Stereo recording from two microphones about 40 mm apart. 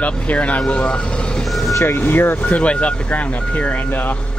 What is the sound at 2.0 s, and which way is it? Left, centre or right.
Speech, left.